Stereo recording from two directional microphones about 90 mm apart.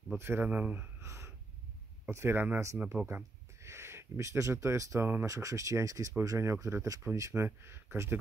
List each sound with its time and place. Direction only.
0.2 s speech: 25° right (ahead or behind)
1.0 s gasp: 30° right (ahead or behind)
2.0 s speech: 25° right (ahead or behind)